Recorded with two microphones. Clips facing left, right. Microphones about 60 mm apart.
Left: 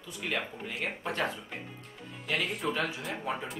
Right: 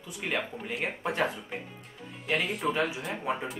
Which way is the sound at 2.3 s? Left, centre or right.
Centre.